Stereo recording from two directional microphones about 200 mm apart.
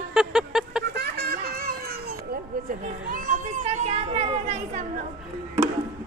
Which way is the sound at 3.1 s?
35° right (ahead or behind).